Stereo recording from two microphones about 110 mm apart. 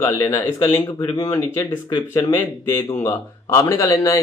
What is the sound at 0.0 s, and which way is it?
Speech, 25° left (ahead or behind).